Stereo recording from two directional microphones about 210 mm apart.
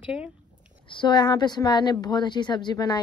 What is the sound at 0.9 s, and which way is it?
A woman's voice, 20° left (ahead or behind).